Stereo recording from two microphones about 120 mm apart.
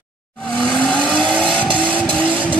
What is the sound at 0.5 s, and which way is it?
Vehicle, 10° left (ahead or behind).